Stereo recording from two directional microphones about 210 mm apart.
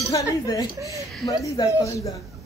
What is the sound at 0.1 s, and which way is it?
Speech, 15° left (ahead or behind).